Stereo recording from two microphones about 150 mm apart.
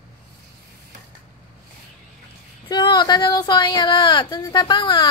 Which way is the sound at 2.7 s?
30° left (ahead or behind).